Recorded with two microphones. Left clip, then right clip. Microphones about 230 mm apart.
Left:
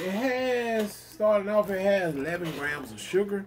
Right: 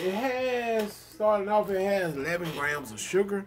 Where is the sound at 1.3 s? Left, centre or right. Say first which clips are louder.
Even; left.